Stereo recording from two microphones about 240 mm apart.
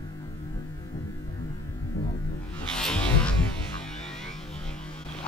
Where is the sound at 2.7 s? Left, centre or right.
Centre.